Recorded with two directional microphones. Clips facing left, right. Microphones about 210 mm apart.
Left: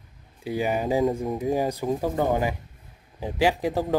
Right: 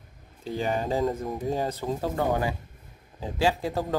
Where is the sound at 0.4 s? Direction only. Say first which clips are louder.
Left 3 dB; 10° left (ahead or behind).